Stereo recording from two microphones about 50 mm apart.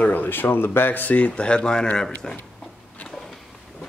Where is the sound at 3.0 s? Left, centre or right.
Centre.